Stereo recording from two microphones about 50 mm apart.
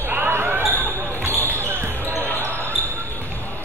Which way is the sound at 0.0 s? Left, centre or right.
Right.